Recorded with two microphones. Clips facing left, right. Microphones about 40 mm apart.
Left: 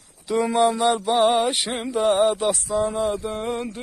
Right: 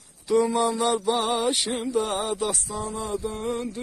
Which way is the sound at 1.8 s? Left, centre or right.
Left.